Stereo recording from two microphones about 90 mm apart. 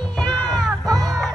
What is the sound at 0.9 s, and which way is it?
Music, centre (ahead or behind).